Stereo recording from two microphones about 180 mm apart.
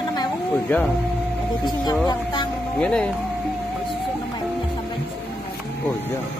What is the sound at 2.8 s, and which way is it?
Speech, 5° left (ahead or behind).